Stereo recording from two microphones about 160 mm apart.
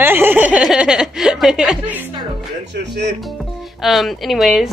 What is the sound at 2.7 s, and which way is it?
Speech, 90° right.